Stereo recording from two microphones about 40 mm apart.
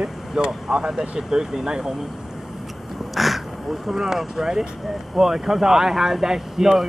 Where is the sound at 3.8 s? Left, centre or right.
Centre.